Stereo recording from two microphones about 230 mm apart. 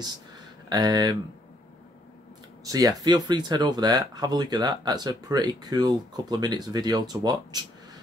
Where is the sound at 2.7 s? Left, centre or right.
Centre.